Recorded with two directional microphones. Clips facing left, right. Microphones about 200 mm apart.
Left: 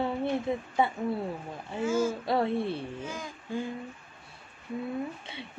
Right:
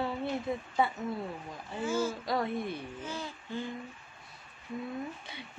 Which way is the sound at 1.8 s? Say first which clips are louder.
Left 4 dB; 10° left (ahead or behind).